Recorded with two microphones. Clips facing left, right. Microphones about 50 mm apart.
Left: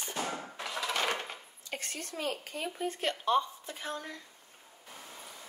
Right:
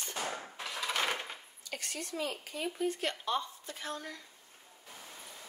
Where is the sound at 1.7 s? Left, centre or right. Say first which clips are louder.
Even; left.